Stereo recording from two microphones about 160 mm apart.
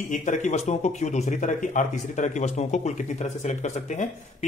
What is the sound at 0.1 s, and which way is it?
Speech, 50° left (ahead or behind).